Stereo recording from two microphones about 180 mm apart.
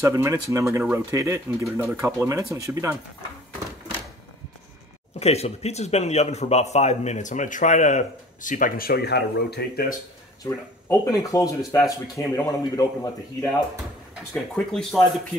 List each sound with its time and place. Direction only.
0.0 s speech: 15° right (ahead or behind)
5.2 s speech: 35° left (ahead or behind); by 9.9 s 60° left (ahead or behind)
10.4 s speech: 20° left (ahead or behind)
14.3 s speech: centre (ahead or behind)